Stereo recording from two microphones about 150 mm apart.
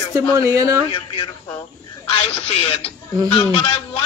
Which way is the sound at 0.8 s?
35° left (ahead or behind).